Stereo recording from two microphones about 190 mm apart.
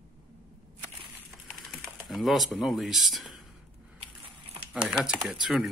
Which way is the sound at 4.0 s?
30° right (ahead or behind).